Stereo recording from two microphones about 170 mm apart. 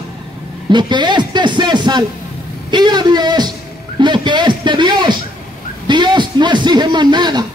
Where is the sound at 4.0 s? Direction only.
25° right (ahead or behind).